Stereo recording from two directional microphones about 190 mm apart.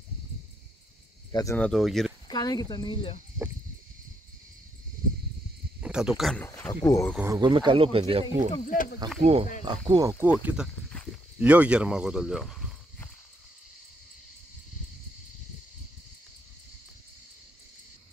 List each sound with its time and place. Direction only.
1.3 s speech: 15° left (ahead or behind)
1.6 s speech: centre (ahead or behind)
2.2 s speech: 20° left (ahead or behind)
5.8 s speech: 5° right (ahead or behind)
6.7 s speech: 20° left (ahead or behind)
7.2 s speech: 15° right (ahead or behind)
8.6 s speech: 45° left (ahead or behind)
9.2 s speech: 30° right (ahead or behind)
10.4 s speech: 5° right (ahead or behind)